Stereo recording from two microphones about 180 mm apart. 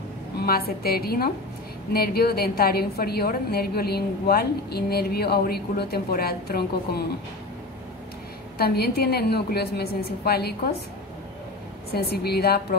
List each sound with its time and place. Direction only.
0.4 s a woman's voice: 60° left (ahead or behind)
8.5 s a woman's voice: 60° left (ahead or behind)
11.9 s a woman's voice: 60° left (ahead or behind)